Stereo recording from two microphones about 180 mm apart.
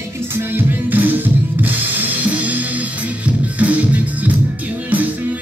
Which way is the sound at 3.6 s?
10° right (ahead or behind).